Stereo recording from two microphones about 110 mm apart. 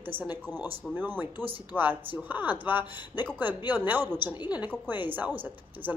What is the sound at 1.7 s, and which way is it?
Speech, 15° right (ahead or behind).